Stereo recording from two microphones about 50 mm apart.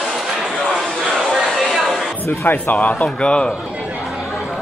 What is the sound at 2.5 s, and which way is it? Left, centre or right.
Speech, left.